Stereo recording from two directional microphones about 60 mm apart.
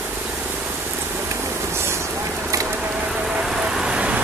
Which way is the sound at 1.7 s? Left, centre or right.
Right.